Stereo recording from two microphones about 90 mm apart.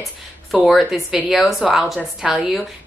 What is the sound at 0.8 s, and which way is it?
A woman's voice, centre (ahead or behind).